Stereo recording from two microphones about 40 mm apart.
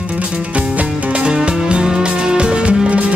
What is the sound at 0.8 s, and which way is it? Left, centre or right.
Music, right.